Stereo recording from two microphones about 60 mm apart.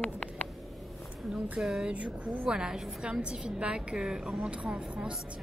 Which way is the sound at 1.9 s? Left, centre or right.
Centre.